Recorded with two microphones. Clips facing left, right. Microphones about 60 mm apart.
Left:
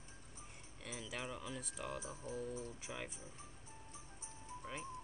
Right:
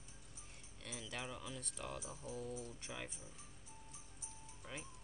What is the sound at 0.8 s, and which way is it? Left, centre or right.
Speech, centre.